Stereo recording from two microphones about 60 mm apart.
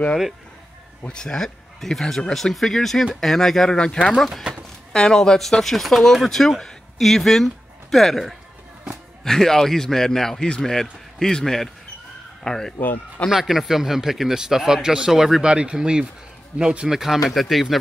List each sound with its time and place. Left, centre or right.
1.0 s a man's voice: centre
4.5 s a sound: centre
4.9 s a man's voice: centre
13.3 s speech: centre